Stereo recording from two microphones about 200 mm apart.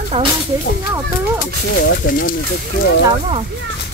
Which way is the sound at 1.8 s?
60° left (ahead or behind).